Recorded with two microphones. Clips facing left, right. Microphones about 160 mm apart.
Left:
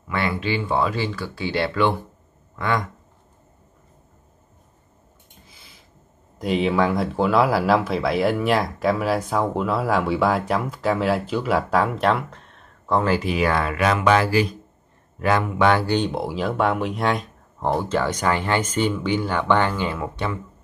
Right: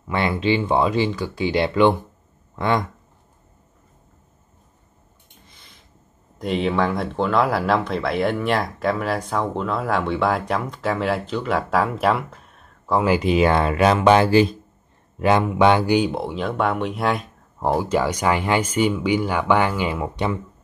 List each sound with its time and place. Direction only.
0.1 s speech: 25° right (ahead or behind)
5.5 s a sound: 5° left (ahead or behind)
6.3 s speech: centre (ahead or behind)
13.1 s speech: 20° right (ahead or behind)
16.1 s speech: centre (ahead or behind); by 20.3 s 20° right (ahead or behind)